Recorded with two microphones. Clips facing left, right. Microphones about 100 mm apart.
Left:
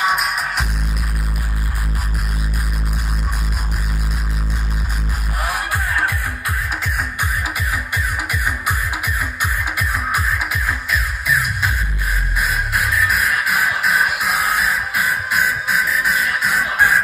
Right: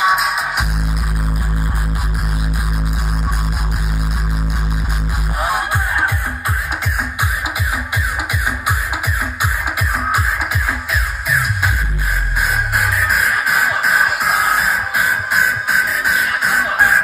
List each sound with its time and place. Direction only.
0.0 s music: centre (ahead or behind)
5.4 s music: 35° right (ahead or behind)
13.1 s music: centre (ahead or behind)
15.7 s music: centre (ahead or behind)